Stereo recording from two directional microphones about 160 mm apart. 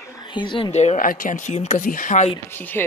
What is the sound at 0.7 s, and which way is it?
Speech, 45° left (ahead or behind).